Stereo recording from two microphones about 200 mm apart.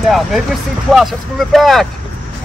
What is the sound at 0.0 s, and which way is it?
Speech, centre (ahead or behind).